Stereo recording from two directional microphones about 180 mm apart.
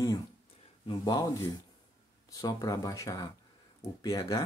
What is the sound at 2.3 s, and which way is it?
Speech, 20° left (ahead or behind).